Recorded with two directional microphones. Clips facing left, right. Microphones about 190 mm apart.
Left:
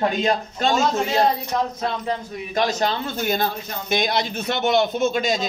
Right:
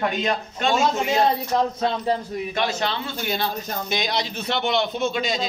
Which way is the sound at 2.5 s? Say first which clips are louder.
Left 5 dB; 40° left (ahead or behind).